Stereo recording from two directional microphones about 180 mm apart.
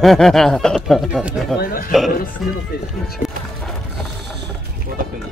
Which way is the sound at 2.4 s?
Centre (ahead or behind).